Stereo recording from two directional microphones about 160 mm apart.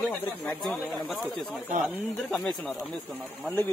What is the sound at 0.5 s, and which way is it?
Speech, 5° left (ahead or behind).